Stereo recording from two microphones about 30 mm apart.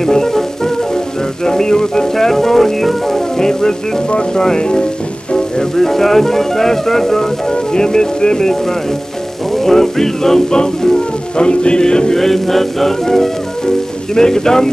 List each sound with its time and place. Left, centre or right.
0.0 s music: centre
4.4 s speech: left
5.8 s music: centre
7.7 s speech: left
9.5 s music: centre
10.5 s speech: left
12.2 s music: centre